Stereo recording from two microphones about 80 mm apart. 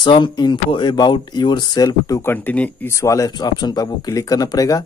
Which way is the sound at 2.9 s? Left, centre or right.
Left.